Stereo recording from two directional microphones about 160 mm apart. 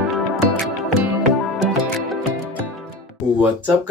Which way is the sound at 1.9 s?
Centre (ahead or behind).